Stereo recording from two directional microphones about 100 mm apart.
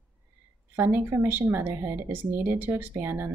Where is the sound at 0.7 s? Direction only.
20° right (ahead or behind).